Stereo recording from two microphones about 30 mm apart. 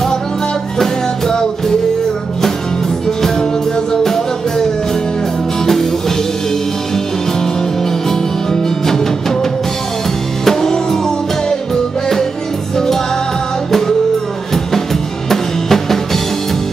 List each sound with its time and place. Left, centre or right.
0.7 s music: centre
4.0 s music: centre
5.7 s music: centre
8.6 s music: centre
15.2 s music: centre